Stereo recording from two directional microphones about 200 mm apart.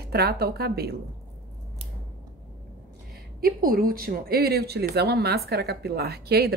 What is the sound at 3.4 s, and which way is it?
Speech, 45° right (ahead or behind).